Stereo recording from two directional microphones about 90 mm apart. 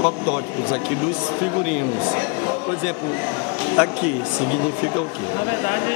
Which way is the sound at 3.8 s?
15° right (ahead or behind).